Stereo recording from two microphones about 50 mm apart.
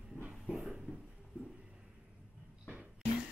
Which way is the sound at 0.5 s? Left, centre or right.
Centre.